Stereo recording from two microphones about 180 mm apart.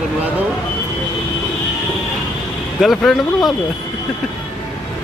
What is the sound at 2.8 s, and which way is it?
Speech, centre (ahead or behind).